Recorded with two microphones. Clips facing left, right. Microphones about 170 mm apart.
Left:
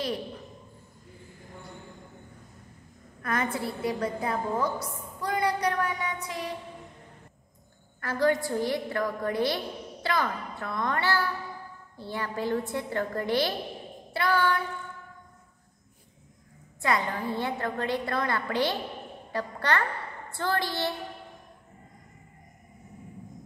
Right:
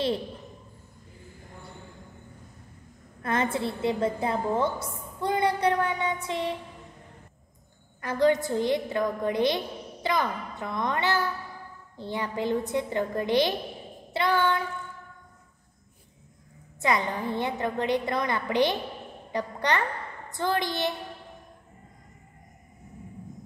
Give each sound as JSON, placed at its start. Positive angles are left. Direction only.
{"t": 3.2, "sound": "a woman's voice", "side_deg": -25}
{"t": 8.0, "sound": "a woman's voice", "side_deg": -20}
{"t": 16.8, "sound": "a woman's voice", "side_deg": -20}